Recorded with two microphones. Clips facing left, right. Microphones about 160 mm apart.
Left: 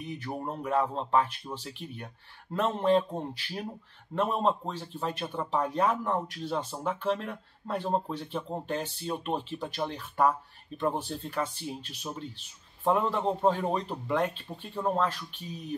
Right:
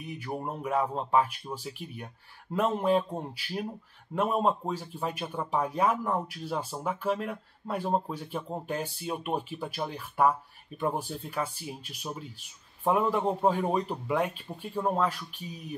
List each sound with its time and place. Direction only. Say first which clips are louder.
0.0 s speech: even; 5° right (ahead or behind)